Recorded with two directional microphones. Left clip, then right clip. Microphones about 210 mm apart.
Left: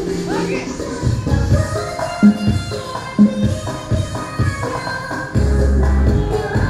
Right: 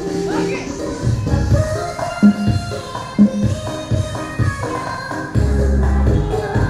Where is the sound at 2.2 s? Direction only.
30° right (ahead or behind).